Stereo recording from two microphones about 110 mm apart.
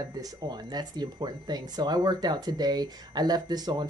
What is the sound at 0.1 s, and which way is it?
Speech, 35° right (ahead or behind).